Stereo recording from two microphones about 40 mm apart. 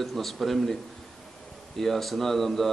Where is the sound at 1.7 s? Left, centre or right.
Centre.